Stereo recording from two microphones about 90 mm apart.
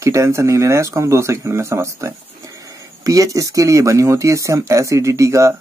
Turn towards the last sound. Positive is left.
turn(degrees=-35)  # may be behind; listen again after turning